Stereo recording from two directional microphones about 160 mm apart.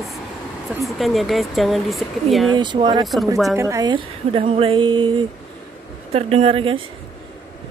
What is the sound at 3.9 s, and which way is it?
Speech, 35° right (ahead or behind).